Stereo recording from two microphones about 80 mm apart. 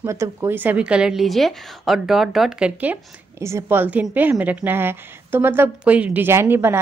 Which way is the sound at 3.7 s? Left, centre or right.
Right.